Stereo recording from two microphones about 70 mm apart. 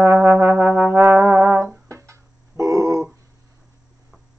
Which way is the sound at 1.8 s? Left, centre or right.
Right.